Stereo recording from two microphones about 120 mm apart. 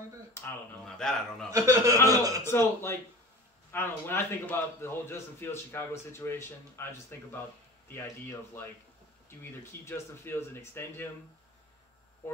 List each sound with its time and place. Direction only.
0.4 s speech: 20° left (ahead or behind)
0.9 s a man's voice: 5° left (ahead or behind)
1.5 s a man's voice: 25° right (ahead or behind)
2.4 s a man's voice: 20° left (ahead or behind)